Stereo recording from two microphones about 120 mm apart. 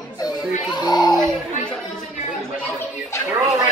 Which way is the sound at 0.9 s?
35° left (ahead or behind).